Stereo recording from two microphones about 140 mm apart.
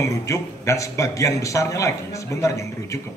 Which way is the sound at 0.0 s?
20° left (ahead or behind).